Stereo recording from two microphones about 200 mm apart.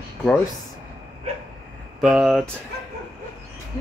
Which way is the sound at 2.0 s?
5° right (ahead or behind).